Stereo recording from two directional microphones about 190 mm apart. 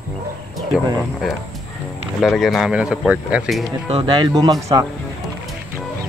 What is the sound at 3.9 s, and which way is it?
Speech, 25° right (ahead or behind).